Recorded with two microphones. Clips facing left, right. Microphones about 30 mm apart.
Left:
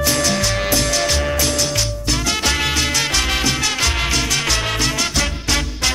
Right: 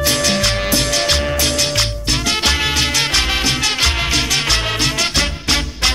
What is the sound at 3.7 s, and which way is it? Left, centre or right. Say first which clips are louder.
Music: right 2 dB; right.